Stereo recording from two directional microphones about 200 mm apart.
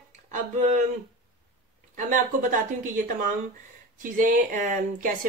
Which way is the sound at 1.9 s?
40° right (ahead or behind).